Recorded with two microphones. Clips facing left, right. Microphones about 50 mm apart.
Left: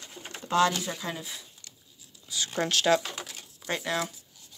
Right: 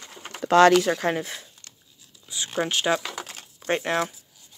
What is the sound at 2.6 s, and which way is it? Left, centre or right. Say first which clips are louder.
Speech: right 1 dB; centre.